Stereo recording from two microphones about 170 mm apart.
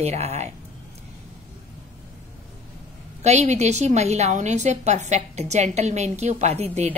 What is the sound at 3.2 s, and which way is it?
A woman's voice, 40° right (ahead or behind).